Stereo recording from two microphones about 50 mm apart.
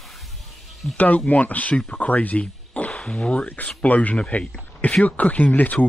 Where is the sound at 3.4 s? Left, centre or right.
Left.